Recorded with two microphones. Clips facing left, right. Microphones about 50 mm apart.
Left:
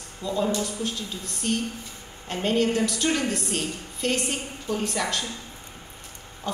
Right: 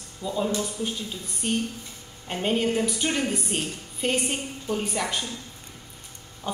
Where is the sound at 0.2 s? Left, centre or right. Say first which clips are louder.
Left 1 dB; centre.